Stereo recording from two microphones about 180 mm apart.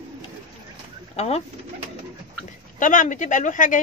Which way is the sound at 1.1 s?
35° left (ahead or behind).